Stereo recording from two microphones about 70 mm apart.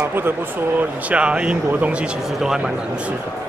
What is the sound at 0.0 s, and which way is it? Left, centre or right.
Speech, right.